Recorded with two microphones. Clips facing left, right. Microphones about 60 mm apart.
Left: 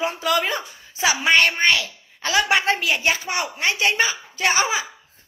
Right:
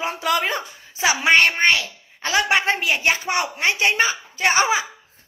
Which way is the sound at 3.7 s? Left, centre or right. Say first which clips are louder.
Right 1 dB; right.